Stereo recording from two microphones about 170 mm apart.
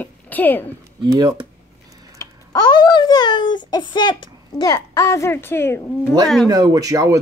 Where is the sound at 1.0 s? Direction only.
25° right (ahead or behind).